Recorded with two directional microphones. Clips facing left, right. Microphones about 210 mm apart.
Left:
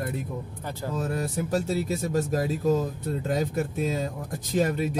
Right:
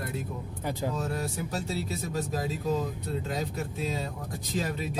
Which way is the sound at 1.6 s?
45° left (ahead or behind).